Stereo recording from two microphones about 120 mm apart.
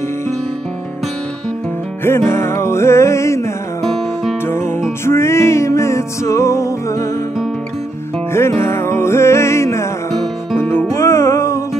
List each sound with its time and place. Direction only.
2.0 s music: 20° left (ahead or behind)
3.8 s music: centre (ahead or behind)
4.5 s music: 20° left (ahead or behind)
8.3 s music: 20° left (ahead or behind)